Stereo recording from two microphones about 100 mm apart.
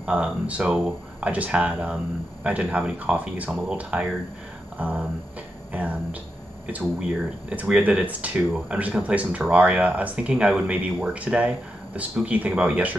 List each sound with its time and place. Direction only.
0.0 s speech: 10° right (ahead or behind)